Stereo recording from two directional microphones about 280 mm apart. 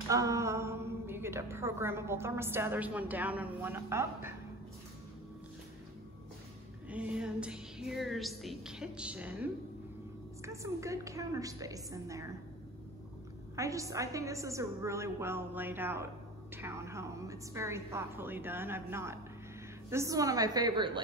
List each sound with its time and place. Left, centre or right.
0.1 s a woman's voice: centre
6.9 s a woman's voice: centre
13.6 s a woman's voice: centre